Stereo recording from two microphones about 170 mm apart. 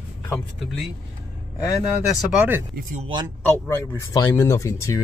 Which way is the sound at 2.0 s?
5° right (ahead or behind).